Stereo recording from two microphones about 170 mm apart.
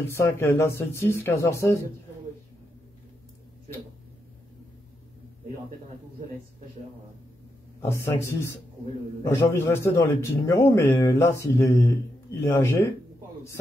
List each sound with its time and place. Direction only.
0.0 s speech: 15° left (ahead or behind)
7.8 s speech: 15° left (ahead or behind)